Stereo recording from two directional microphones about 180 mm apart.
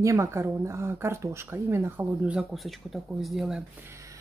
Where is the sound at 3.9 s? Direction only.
15° right (ahead or behind).